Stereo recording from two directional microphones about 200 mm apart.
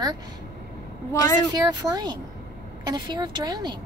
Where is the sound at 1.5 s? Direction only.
20° right (ahead or behind).